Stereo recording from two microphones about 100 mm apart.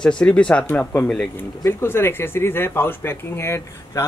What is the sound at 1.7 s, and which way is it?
Speech, 25° left (ahead or behind).